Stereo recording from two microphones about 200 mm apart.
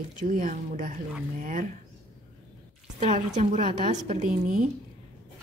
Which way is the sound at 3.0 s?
40° right (ahead or behind).